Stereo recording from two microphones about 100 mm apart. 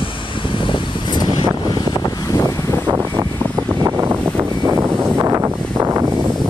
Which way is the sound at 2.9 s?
30° right (ahead or behind).